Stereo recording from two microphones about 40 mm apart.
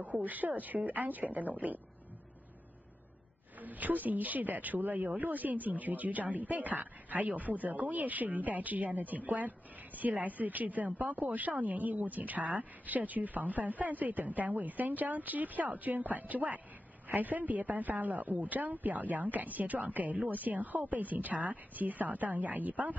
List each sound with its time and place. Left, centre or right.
0.2 s a woman's voice: right
3.6 s a woman's voice: right